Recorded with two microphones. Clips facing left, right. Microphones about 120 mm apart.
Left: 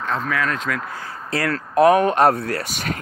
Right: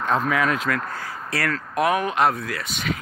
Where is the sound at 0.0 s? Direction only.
15° right (ahead or behind).